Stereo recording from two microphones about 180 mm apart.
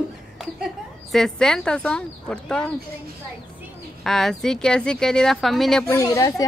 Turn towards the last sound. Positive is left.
turn(degrees=20)  # may be behind; listen again after turning